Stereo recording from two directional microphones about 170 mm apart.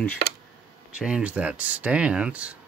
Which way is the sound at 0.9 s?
5° right (ahead or behind).